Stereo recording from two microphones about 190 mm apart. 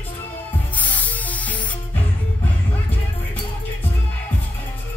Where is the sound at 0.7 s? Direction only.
10° left (ahead or behind).